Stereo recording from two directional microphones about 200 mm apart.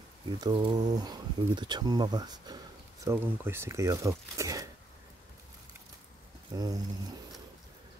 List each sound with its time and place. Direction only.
0.4 s speech: 20° right (ahead or behind)
6.5 s speech: 20° right (ahead or behind)